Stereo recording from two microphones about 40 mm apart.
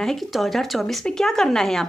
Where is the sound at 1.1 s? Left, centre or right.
Centre.